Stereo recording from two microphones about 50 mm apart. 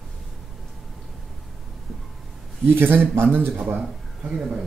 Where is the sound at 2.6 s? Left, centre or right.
Right.